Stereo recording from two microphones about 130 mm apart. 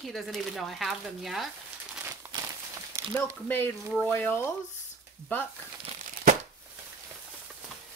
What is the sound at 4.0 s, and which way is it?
Speech, 15° left (ahead or behind).